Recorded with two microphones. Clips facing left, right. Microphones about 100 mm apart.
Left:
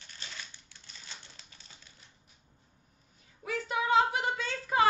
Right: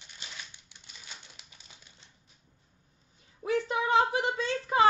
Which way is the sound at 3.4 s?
25° right (ahead or behind).